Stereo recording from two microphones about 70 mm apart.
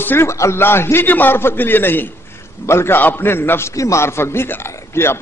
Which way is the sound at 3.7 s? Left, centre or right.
Left.